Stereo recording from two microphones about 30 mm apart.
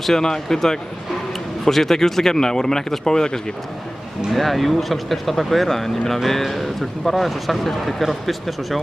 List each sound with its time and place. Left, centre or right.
0.0 s speech: centre
4.3 s speech: centre